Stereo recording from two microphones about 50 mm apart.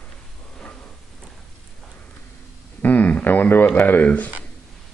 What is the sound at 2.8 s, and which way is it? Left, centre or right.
Speech, left.